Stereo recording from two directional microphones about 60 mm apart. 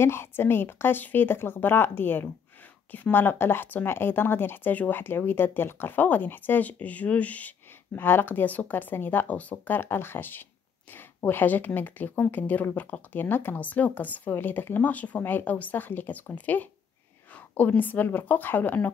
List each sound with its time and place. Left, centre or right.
0.0 s a woman's voice: left
7.9 s a woman's voice: left
9.8 s a woman's voice: left